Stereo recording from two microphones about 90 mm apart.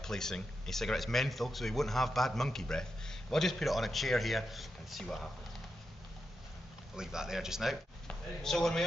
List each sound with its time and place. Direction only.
0.0 s a man's voice: 5° left (ahead or behind)
7.0 s a man's voice: 5° right (ahead or behind)
8.1 s speech: 5° left (ahead or behind)